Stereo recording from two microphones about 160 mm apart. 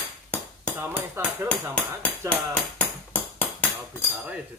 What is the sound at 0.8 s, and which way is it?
Speech, 15° right (ahead or behind).